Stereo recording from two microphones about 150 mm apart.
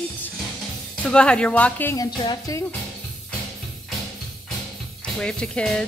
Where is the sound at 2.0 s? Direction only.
25° left (ahead or behind).